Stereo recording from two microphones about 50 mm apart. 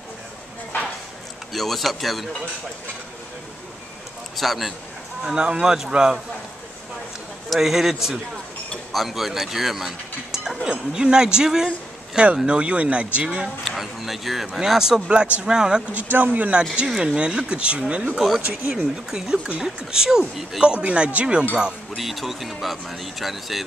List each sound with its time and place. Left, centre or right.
1.5 s speech: centre
4.4 s speech: centre
5.2 s speech: centre
7.4 s speech: centre
12.4 s speech: right
13.7 s speech: centre
15.9 s speech: right
17.0 s speech: centre
18.1 s speech: centre
18.4 s speech: right
19.0 s speech: centre
20.6 s speech: right
21.9 s speech: centre